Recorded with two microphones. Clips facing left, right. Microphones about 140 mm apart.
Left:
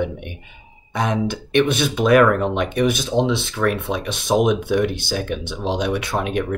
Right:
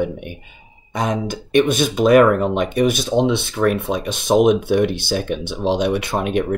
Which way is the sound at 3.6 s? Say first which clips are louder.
Right 3 dB; 25° right (ahead or behind).